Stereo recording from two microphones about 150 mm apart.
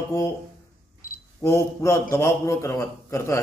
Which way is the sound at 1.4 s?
20° left (ahead or behind).